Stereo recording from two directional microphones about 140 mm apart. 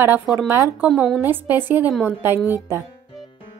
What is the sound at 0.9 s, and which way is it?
Speech, centre (ahead or behind).